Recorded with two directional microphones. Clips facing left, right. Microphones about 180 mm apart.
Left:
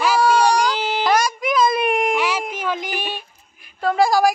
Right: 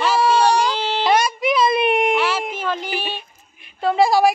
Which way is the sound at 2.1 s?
10° left (ahead or behind).